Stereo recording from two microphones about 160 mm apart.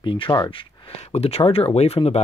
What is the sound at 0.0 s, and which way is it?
Speech, 30° left (ahead or behind).